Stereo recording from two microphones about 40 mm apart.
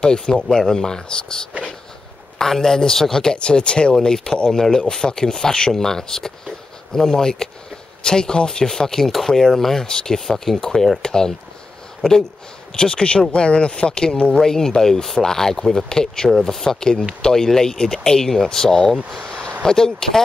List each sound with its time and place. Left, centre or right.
0.0 s speech: centre
14.3 s speech: centre
16.3 s speech: centre